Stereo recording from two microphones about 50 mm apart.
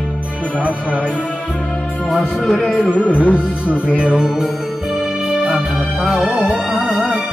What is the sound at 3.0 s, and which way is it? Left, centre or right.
Music, left.